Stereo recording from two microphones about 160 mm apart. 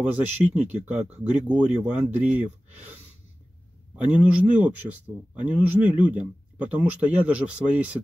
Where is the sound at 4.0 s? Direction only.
10° right (ahead or behind).